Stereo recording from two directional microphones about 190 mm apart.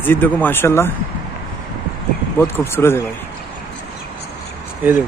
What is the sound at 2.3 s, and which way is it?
Speech, 15° left (ahead or behind).